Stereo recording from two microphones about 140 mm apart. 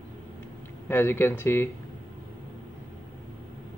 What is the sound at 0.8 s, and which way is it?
Speech, 15° left (ahead or behind).